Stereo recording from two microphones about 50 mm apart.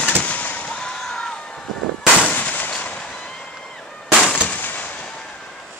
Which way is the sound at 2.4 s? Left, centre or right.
Left.